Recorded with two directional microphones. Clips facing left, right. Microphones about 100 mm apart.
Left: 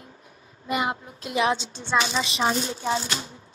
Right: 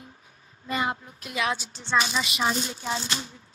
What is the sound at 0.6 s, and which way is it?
A woman's voice, 20° left (ahead or behind).